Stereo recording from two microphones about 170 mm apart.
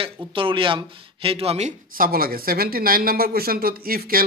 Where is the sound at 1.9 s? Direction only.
60° right (ahead or behind).